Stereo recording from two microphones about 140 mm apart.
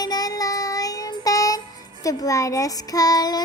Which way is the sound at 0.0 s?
25° left (ahead or behind).